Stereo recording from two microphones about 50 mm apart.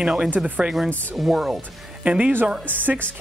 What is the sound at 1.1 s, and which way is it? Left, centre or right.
Speech, centre.